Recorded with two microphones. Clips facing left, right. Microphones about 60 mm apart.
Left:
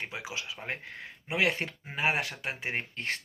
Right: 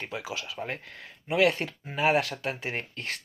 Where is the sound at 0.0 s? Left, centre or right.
Left.